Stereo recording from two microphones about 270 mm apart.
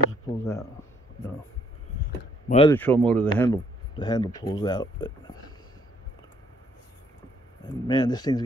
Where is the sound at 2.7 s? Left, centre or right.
Centre.